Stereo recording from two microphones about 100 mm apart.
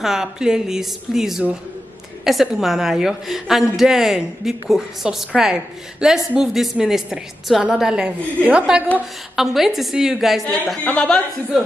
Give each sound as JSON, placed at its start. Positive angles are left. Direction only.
{"t": 0.0, "sound": "a woman's voice", "side_deg": -5}
{"t": 10.8, "sound": "speech", "side_deg": 10}